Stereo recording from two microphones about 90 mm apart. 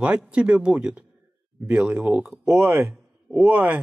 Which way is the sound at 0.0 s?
15° right (ahead or behind).